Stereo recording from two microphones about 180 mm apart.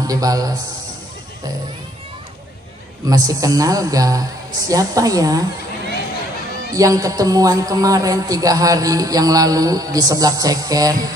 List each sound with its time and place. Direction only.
0.0 s a man's voice: 20° right (ahead or behind)
3.1 s a man's voice: 20° right (ahead or behind)
6.7 s a man's voice: 20° right (ahead or behind)